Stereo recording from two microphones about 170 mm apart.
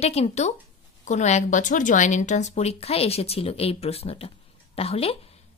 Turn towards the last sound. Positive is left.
turn(degrees=35)  # may be behind; listen again after turning